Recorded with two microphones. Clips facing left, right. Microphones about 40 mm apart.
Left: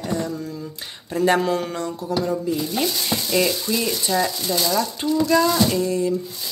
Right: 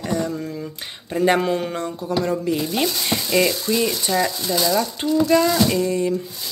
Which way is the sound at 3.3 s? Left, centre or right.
Right.